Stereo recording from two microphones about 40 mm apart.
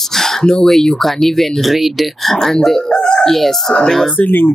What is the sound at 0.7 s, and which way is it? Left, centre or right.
Speech, centre.